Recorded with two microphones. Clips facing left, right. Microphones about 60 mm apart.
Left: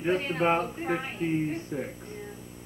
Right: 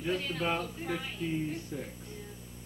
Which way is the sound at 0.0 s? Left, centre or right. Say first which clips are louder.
Left 7 dB; left.